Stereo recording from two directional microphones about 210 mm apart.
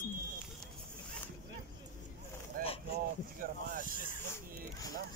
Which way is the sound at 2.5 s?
40° right (ahead or behind).